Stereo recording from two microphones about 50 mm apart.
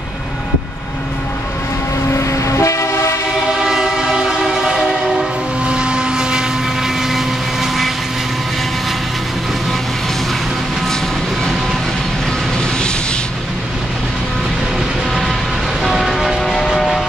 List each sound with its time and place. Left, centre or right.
2.1 s train: left
3.6 s train: centre
5.6 s vehicle: centre
16.0 s train: centre
16.6 s vehicle: centre